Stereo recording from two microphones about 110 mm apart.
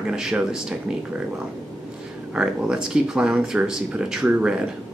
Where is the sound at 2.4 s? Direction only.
5° right (ahead or behind).